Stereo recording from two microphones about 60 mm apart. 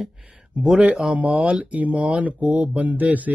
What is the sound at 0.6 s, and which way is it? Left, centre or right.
Speech, centre.